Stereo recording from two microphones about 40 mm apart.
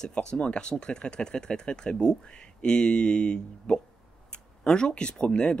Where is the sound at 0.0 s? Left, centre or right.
Centre.